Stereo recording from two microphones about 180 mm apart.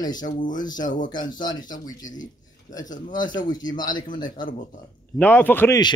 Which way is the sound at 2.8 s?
45° left (ahead or behind).